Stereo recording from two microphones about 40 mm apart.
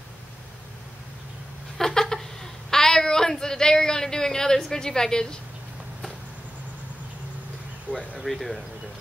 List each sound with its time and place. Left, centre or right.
1.8 s a sound: centre
2.7 s speech: centre
8.2 s speech: centre